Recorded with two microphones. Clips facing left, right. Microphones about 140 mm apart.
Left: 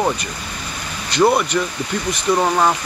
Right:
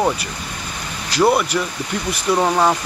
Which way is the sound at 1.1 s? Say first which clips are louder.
Left 1 dB; 5° right (ahead or behind).